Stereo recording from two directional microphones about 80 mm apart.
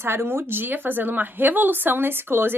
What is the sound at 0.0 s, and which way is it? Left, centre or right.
A woman's voice, right.